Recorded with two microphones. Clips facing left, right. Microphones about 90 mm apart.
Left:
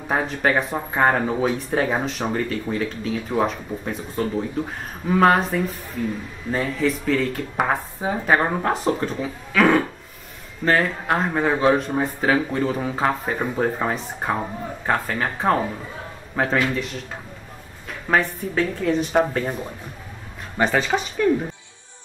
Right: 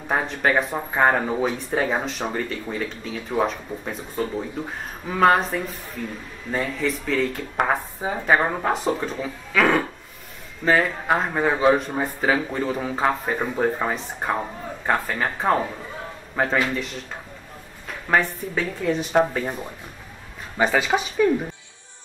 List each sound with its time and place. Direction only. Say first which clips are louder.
0.1 s speech: even; centre (ahead or behind)
18.0 s speech: even; centre (ahead or behind)